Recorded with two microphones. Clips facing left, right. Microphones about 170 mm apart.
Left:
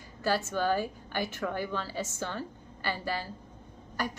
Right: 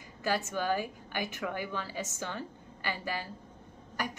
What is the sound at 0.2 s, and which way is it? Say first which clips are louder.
A woman's voice: left 3 dB; 15° right (ahead or behind).